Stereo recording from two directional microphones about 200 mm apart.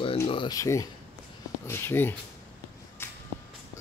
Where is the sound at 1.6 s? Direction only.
10° left (ahead or behind).